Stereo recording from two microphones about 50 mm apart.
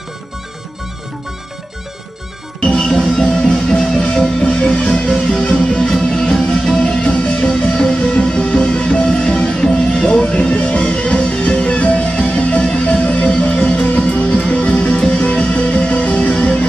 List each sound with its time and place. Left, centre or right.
2.6 s music: centre; by 16.6 s left